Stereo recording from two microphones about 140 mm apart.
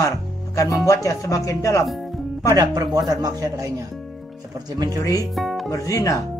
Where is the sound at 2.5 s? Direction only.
25° right (ahead or behind).